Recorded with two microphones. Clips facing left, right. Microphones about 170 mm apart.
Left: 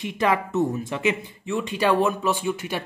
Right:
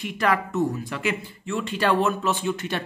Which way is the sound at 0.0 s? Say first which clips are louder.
Left 1 dB; 20° left (ahead or behind).